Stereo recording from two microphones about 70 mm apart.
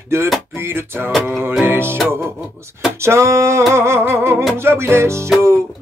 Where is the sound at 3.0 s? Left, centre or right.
Right.